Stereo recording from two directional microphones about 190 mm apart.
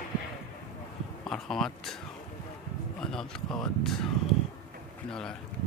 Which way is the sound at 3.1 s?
5° left (ahead or behind).